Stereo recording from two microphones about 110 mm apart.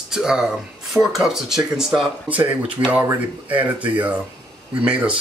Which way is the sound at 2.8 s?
25° right (ahead or behind).